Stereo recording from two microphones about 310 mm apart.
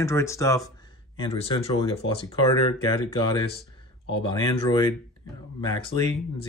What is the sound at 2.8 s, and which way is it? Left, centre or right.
Speech, centre.